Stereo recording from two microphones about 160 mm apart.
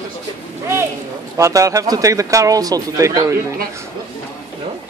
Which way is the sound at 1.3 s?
20° right (ahead or behind).